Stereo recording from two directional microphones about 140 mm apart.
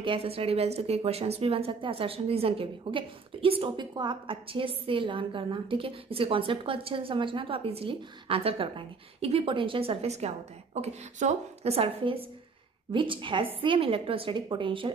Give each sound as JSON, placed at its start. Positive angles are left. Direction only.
{"t": 0.0, "sound": "a woman's voice", "side_deg": -40}